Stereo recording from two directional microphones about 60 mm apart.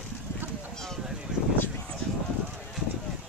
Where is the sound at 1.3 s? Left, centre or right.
Centre.